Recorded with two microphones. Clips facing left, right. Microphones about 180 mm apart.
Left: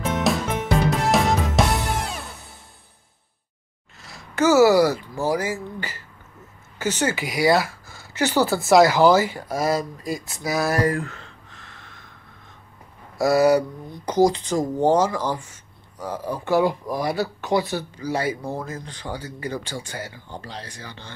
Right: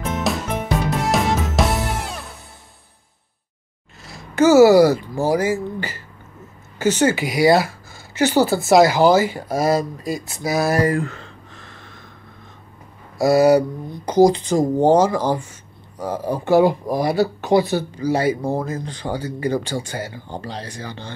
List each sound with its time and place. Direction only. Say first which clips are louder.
0.3 s music: even; centre (ahead or behind)
4.1 s speech: right 5 dB; 25° right (ahead or behind)
13.2 s speech: right 3 dB; 25° right (ahead or behind)